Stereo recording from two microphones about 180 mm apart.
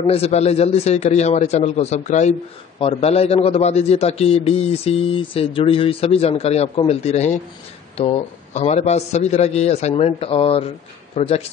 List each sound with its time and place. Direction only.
0.0 s a man's voice: 35° left (ahead or behind)